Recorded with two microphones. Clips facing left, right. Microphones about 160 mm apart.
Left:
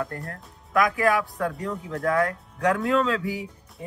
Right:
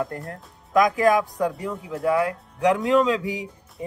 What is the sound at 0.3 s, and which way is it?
Speech, 20° right (ahead or behind).